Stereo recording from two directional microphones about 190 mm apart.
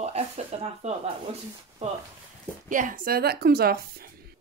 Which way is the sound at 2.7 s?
45° right (ahead or behind).